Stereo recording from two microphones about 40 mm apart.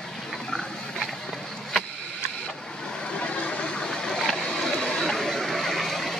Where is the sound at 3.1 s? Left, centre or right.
Left.